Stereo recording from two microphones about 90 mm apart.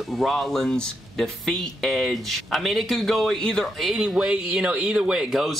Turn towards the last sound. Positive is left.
turn(degrees=0)  # may be behind; listen again after turning